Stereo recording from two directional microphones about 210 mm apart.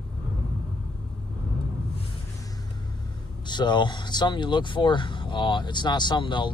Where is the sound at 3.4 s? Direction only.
20° left (ahead or behind).